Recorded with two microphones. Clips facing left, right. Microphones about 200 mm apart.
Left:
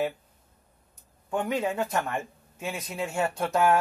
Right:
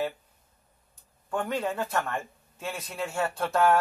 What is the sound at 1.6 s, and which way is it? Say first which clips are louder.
A man's voice: left 2 dB; 15° left (ahead or behind).